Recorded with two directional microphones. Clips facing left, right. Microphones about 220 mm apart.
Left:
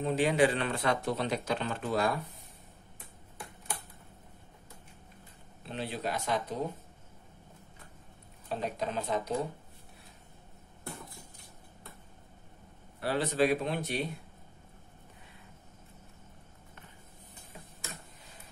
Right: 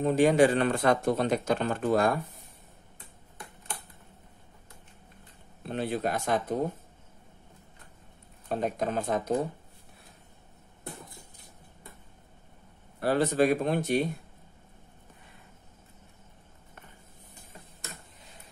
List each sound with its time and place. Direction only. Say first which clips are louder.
0.0 s speech: right 5 dB; 45° right (ahead or behind)
5.7 s speech: right 6 dB; 50° right (ahead or behind)
8.5 s speech: right 5 dB; 50° right (ahead or behind)
13.0 s speech: right 4 dB; 45° right (ahead or behind)